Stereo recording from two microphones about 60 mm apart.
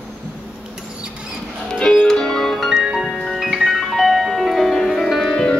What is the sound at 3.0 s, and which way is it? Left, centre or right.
Music, centre.